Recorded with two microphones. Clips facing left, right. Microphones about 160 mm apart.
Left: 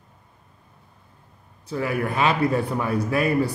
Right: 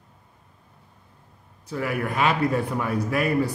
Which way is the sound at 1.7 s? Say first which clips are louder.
Left 2 dB; 30° left (ahead or behind).